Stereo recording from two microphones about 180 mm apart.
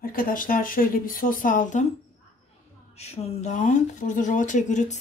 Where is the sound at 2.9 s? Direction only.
35° left (ahead or behind).